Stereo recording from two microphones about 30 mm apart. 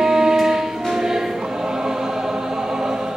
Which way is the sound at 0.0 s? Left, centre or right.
Centre.